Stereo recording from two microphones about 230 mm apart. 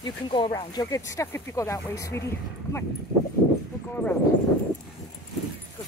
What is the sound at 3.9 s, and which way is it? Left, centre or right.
Speech, centre.